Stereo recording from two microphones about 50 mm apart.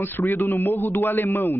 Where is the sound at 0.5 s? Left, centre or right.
Left.